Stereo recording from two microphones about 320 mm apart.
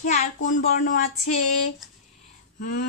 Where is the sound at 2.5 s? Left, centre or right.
Left.